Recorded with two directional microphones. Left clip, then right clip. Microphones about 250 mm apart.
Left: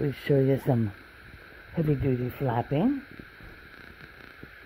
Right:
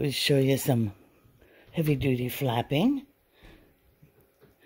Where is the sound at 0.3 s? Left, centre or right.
Right.